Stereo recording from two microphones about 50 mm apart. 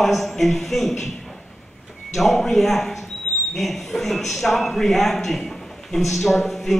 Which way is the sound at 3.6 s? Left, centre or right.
Centre.